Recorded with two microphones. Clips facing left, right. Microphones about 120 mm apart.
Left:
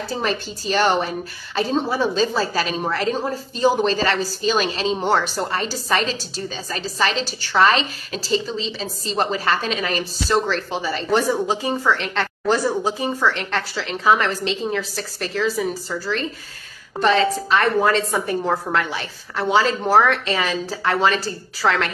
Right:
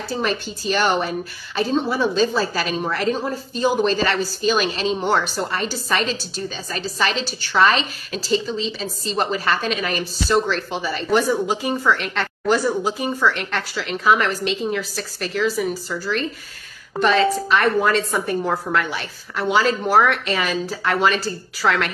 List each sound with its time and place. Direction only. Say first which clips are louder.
0.2 s a woman's voice: right 1 dB; 35° left (ahead or behind)